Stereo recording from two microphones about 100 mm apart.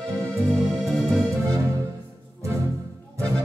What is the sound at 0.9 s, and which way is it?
Music, 30° right (ahead or behind).